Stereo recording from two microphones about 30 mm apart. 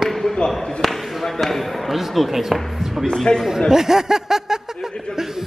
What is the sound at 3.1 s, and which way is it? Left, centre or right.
Speech, centre.